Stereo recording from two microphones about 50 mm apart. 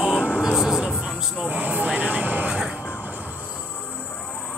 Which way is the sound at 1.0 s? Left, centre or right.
Right.